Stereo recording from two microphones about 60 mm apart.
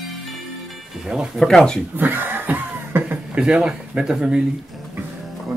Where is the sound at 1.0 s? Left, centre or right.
Centre.